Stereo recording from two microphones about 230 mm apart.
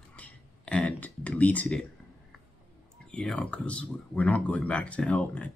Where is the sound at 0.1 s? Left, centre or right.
Centre.